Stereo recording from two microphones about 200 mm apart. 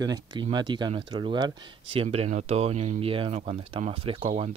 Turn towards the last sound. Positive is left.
turn(degrees=-35)  # may be behind; listen again after turning